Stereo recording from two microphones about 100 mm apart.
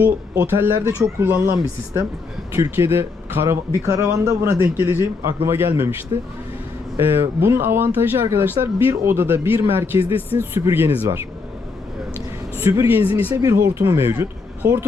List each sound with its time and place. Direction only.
0.0 s speech: 25° right (ahead or behind)
2.5 s speech: 25° right (ahead or behind)
7.0 s speech: 20° right (ahead or behind)
12.5 s speech: 20° right (ahead or behind)